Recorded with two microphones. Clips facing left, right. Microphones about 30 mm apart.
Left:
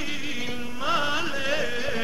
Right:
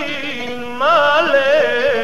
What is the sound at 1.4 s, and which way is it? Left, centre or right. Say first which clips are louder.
Carnatic music: right 14 dB; right.